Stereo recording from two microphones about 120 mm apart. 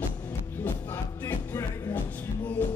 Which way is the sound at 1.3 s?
15° left (ahead or behind).